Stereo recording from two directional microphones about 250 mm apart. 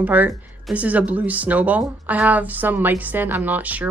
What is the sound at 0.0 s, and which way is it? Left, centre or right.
Speech, centre.